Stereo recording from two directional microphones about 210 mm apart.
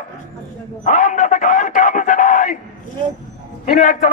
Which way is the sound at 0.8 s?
35° left (ahead or behind).